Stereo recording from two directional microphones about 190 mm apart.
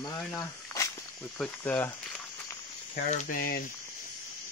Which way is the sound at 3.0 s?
40° left (ahead or behind).